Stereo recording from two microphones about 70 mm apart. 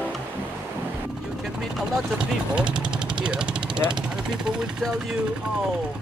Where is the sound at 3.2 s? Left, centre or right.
Centre.